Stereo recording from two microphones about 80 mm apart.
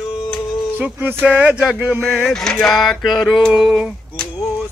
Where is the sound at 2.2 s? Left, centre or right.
Centre.